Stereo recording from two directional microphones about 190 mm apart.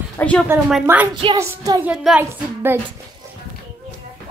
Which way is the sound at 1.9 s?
5° right (ahead or behind).